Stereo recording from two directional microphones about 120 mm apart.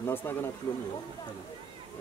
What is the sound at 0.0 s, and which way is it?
Speech, 20° left (ahead or behind).